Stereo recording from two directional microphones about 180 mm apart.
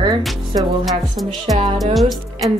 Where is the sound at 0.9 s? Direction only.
Centre (ahead or behind).